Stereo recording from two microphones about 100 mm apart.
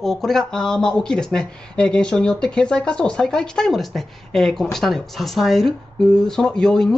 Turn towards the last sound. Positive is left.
turn(degrees=5)  # may be behind; listen again after turning